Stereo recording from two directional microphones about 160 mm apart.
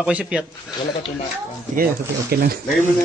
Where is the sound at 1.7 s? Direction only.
65° right (ahead or behind).